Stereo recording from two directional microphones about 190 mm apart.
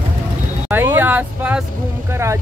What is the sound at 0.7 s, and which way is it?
Vehicle, 10° right (ahead or behind).